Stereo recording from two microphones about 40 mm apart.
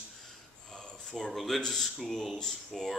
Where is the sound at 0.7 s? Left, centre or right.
Centre.